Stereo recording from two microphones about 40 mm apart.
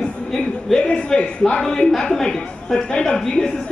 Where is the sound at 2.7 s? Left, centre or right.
Left.